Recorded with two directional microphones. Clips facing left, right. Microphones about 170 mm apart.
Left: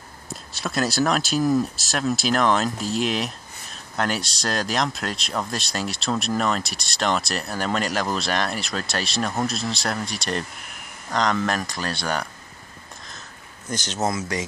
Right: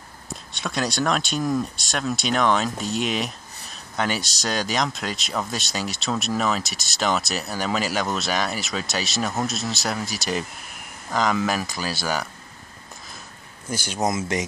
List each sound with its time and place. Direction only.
0.3 s speech: centre (ahead or behind)
13.7 s speech: 10° right (ahead or behind)